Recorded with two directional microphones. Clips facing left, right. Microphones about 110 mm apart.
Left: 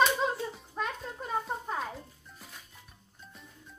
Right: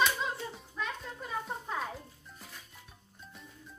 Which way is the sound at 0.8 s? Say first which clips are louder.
Left 3 dB; 50° left (ahead or behind).